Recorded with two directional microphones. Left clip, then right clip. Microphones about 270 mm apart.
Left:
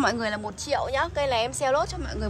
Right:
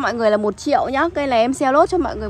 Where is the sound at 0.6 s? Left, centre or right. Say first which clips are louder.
Right 8 dB; centre.